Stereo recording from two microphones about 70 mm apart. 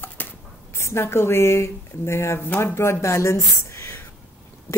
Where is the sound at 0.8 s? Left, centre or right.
Left.